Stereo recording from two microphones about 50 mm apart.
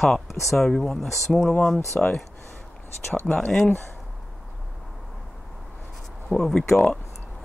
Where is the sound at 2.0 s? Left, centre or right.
Centre.